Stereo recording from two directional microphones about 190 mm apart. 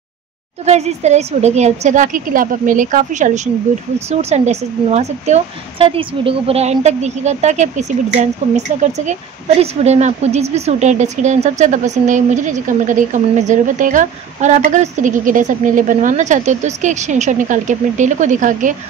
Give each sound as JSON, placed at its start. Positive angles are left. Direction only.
{"t": 0.7, "sound": "a woman's voice", "side_deg": -35}